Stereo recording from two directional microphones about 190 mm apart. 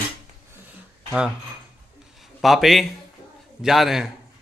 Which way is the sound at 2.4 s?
Centre (ahead or behind).